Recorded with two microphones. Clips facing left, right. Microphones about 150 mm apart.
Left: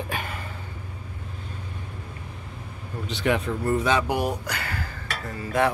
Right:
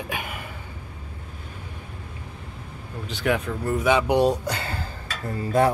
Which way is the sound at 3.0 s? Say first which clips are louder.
Even; centre (ahead or behind).